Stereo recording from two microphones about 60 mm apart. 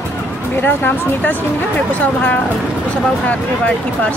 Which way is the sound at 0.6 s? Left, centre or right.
Left.